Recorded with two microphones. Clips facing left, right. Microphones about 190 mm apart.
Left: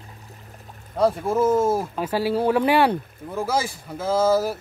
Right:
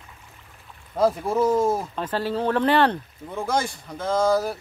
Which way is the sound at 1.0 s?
Centre (ahead or behind).